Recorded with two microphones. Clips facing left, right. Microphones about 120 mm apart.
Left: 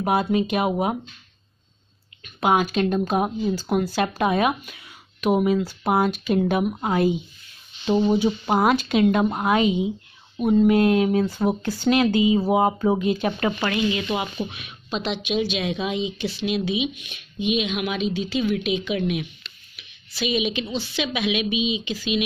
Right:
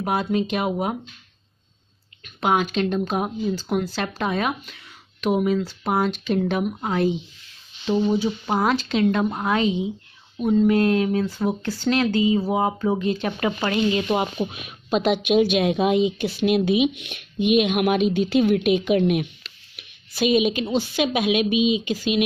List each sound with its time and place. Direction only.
0.0 s speech: 5° left (ahead or behind)
2.2 s speech: 5° left (ahead or behind)
13.7 s speech: 40° right (ahead or behind)